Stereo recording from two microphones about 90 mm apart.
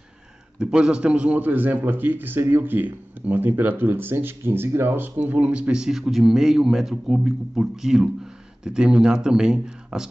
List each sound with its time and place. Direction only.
0.6 s a man's voice: 10° right (ahead or behind)